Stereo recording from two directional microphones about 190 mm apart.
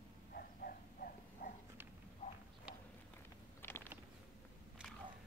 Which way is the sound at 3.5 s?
10° left (ahead or behind).